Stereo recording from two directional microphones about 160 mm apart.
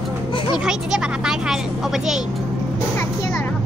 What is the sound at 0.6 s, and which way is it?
Speech, 5° right (ahead or behind).